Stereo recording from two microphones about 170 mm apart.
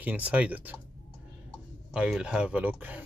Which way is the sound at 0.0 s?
10° right (ahead or behind).